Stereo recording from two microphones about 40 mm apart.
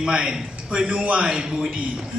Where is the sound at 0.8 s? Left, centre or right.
Right.